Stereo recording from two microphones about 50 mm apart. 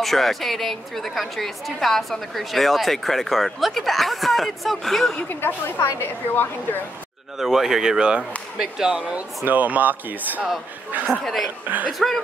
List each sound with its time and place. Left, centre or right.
0.0 s a woman's voice: centre
5.3 s a woman's voice: left
7.3 s speech: centre
9.5 s speech: right
11.1 s a woman's voice: centre
11.6 s speech: right